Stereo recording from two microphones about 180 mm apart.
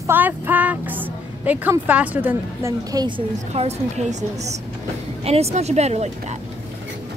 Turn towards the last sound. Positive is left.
turn(degrees=-35)  # may be behind; listen again after turning